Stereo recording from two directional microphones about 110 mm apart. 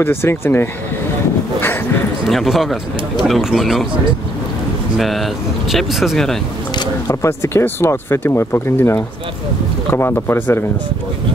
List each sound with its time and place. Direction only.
0.0 s speech: 20° left (ahead or behind)
2.2 s speech: centre (ahead or behind)
4.9 s speech: centre (ahead or behind)
7.1 s speech: 25° left (ahead or behind)